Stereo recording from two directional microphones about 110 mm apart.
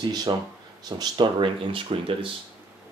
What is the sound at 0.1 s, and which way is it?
Speech, 40° right (ahead or behind).